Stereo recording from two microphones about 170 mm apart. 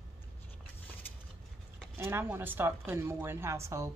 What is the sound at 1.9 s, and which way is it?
Speech, 15° right (ahead or behind).